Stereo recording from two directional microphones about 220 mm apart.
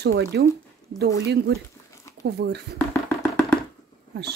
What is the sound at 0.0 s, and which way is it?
A woman's voice, 50° right (ahead or behind).